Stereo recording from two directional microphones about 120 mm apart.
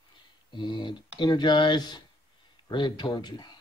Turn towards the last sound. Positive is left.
turn(degrees=35)  # may be behind; listen again after turning